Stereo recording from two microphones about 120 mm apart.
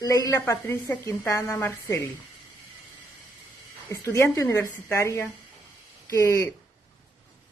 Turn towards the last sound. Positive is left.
turn(degrees=25)  # may be behind; listen again after turning